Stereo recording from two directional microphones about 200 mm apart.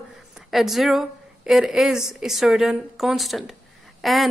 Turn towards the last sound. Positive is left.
turn(degrees=0)  # may be behind; listen again after turning